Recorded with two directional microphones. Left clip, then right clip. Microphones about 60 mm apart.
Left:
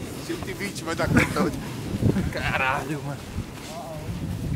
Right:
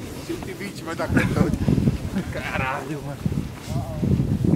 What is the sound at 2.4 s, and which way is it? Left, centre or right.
Speech, left.